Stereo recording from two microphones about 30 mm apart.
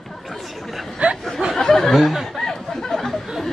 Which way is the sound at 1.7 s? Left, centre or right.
Centre.